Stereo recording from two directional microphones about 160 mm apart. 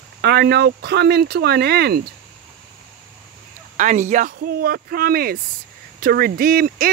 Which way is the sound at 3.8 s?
50° right (ahead or behind).